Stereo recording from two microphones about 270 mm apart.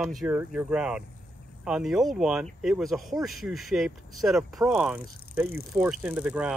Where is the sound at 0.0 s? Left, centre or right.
Centre.